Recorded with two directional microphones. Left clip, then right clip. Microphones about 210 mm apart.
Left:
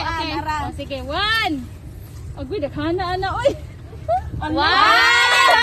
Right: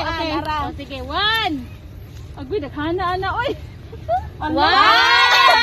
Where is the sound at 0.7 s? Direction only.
30° left (ahead or behind).